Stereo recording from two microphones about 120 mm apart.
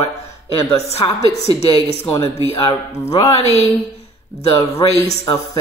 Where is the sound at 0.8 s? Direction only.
55° left (ahead or behind).